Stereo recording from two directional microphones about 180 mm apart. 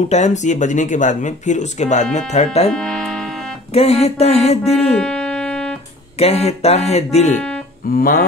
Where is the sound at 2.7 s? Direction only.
5° left (ahead or behind).